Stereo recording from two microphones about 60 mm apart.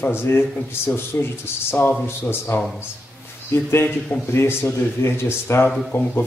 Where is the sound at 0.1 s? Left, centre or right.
Left.